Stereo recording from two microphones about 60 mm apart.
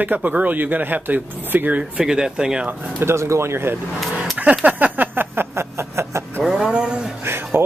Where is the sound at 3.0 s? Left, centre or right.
Right.